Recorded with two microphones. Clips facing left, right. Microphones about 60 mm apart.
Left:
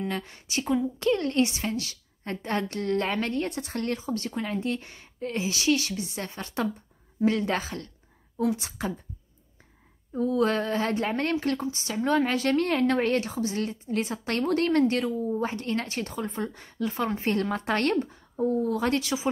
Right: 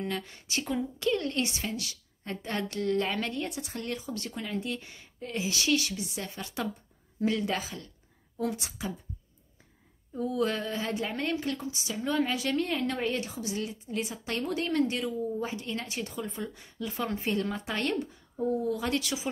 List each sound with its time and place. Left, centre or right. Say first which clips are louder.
0.1 s a woman's voice: left 3 dB; left
3.9 s a woman's voice: left 6 dB; left
10.1 s a woman's voice: left 5 dB; left
17.3 s a woman's voice: left 6 dB; left